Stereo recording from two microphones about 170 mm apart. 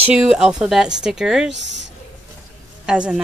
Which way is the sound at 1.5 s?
90° right.